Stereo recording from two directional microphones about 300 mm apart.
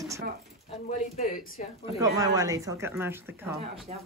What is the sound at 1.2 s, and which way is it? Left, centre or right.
Speech, left.